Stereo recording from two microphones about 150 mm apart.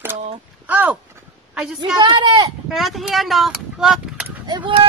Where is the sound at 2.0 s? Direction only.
30° right (ahead or behind).